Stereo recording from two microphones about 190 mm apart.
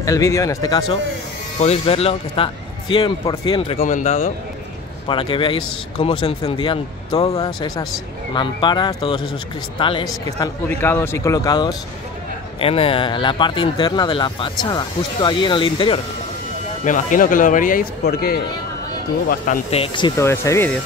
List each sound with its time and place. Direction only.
0.0 s speech: 15° left (ahead or behind)
1.6 s a man's voice: 35° left (ahead or behind)
3.8 s a man's voice: 40° left (ahead or behind)
7.4 s a man's voice: 20° left (ahead or behind)
10.8 s a man's voice: 10° left (ahead or behind)
16.8 s speech: 45° left (ahead or behind)
19.7 s a man's voice: 25° left (ahead or behind)
20.2 s speech: 15° left (ahead or behind)